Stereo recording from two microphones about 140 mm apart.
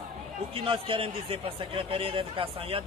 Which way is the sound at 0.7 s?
40° right (ahead or behind).